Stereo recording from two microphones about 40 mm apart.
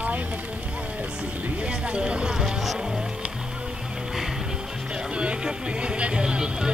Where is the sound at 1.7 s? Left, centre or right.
Right.